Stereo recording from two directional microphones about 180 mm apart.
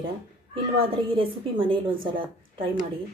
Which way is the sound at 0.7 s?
30° right (ahead or behind).